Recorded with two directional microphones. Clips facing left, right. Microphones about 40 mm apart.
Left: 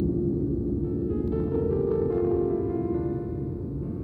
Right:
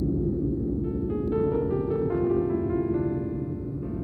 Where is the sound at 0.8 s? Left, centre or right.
Right.